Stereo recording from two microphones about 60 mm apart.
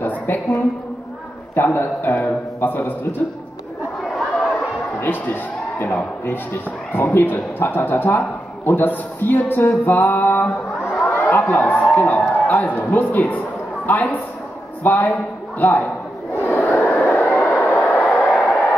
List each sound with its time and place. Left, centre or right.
0.3 s a man's voice: left
1.5 s a man's voice: left
4.0 s chatter: centre
5.0 s a man's voice: left
9.8 s music: left
11.1 s a man's voice: left
16.3 s a sound: left
16.8 s vehicle: left
18.2 s a sound: left